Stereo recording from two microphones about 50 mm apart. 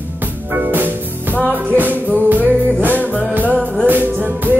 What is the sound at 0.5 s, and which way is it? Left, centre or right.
Music, right.